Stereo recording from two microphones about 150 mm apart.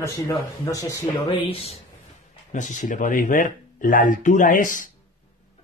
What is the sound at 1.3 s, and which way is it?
Speech, 40° left (ahead or behind).